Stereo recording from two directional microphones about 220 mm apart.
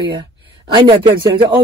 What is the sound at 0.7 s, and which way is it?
Speech, 25° right (ahead or behind).